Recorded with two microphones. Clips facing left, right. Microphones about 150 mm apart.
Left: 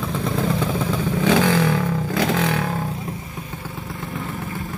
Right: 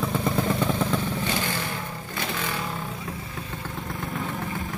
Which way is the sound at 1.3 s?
90° left.